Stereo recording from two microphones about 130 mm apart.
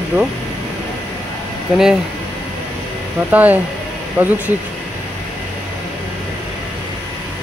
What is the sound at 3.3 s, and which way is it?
Speech, 10° right (ahead or behind).